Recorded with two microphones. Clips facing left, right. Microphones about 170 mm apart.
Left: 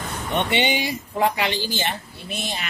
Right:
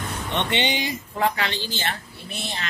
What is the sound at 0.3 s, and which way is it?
Speech, 10° left (ahead or behind).